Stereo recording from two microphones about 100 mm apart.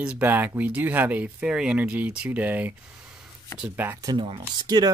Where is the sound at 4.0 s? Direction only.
45° right (ahead or behind).